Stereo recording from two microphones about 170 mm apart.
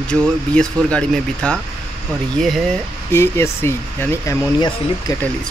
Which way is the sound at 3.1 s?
15° left (ahead or behind).